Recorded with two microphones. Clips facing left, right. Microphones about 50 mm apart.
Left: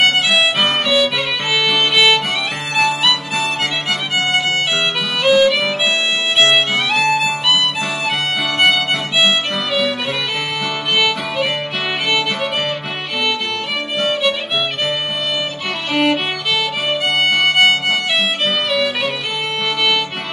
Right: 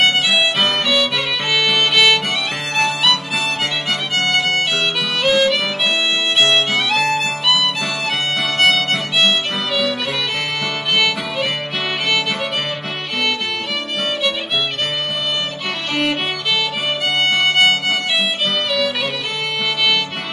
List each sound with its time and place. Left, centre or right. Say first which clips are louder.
0.1 s music: left 1 dB; centre
8.6 s music: even; centre
15.9 s music: left 4 dB; centre
17.3 s music: left 1 dB; centre
18.7 s music: left 1 dB; centre